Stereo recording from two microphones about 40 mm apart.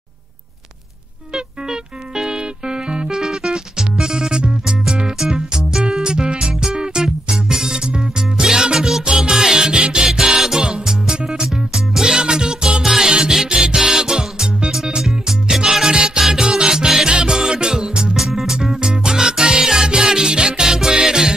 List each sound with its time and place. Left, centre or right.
1.3 s music: centre
10.0 s music: centre
18.1 s music: centre